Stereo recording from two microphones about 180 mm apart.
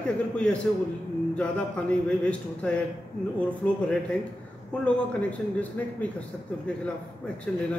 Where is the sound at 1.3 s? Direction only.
5° left (ahead or behind).